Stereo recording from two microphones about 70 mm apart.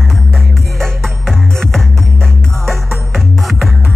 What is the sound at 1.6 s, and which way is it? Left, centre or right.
Music, centre.